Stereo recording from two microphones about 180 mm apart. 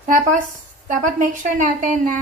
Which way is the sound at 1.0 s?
45° right (ahead or behind).